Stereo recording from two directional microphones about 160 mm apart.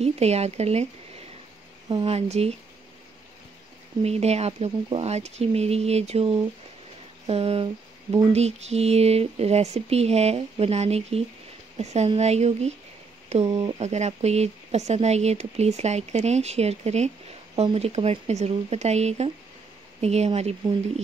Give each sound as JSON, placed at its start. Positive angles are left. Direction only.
{"t": 0.0, "sound": "mantra", "side_deg": -40}
{"t": 4.0, "sound": "mantra", "side_deg": -40}
{"t": 11.8, "sound": "speech", "side_deg": -45}
{"t": 13.3, "sound": "mantra", "side_deg": -40}
{"t": 13.7, "sound": "speech", "side_deg": -45}
{"t": 17.6, "sound": "mantra", "side_deg": -40}